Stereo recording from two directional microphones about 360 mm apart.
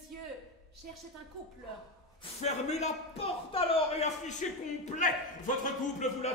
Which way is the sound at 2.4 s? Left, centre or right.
Centre.